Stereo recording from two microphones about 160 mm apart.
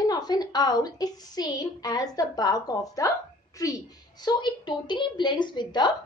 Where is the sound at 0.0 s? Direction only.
25° left (ahead or behind).